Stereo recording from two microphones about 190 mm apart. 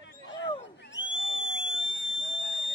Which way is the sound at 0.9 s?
75° left (ahead or behind).